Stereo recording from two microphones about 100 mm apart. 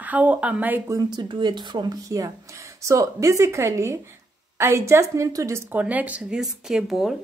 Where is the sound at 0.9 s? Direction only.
40° right (ahead or behind).